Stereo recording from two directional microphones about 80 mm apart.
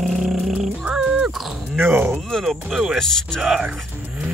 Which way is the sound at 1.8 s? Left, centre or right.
Right.